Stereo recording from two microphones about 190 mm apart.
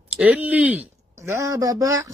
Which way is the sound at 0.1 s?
5° right (ahead or behind).